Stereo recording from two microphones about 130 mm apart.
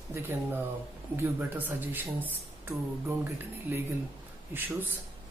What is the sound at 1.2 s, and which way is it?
Speech, 15° right (ahead or behind).